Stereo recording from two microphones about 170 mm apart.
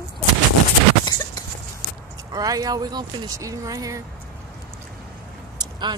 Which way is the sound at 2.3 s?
20° right (ahead or behind).